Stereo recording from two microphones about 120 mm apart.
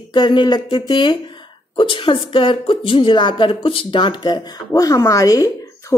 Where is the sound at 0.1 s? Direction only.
40° left (ahead or behind).